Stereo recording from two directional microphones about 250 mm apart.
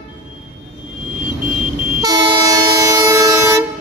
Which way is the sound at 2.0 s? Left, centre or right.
Centre.